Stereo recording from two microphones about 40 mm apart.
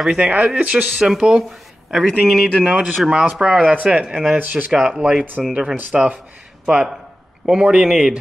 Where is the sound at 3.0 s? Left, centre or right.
Right.